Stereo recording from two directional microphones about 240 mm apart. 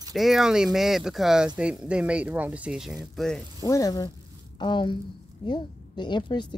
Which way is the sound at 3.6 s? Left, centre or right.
Centre.